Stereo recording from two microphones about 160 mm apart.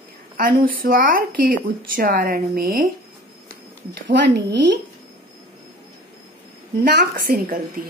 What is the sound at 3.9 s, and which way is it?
Speech, 90° right.